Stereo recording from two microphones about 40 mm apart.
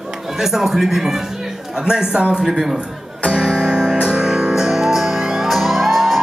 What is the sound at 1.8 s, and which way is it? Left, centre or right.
Speech, centre.